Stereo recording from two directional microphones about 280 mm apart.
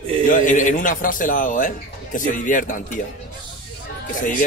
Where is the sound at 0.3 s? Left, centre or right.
Left.